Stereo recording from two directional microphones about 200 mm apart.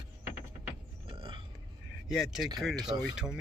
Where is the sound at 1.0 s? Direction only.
25° right (ahead or behind).